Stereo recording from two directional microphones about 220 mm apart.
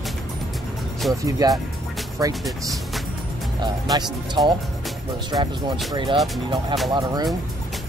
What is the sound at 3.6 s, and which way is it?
Speech, 20° right (ahead or behind).